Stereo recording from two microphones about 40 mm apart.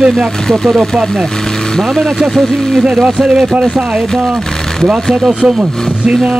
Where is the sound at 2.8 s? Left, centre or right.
Right.